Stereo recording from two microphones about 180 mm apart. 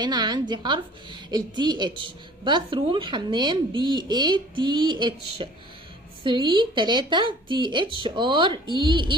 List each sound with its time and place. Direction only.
0.0 s a woman's voice: 25° right (ahead or behind)